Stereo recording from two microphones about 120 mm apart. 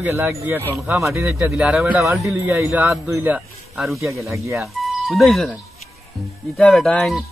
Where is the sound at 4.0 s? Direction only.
25° right (ahead or behind).